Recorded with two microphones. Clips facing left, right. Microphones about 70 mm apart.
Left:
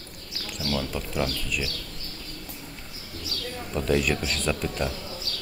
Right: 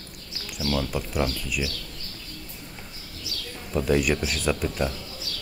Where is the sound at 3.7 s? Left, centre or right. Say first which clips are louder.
Right 2 dB; centre.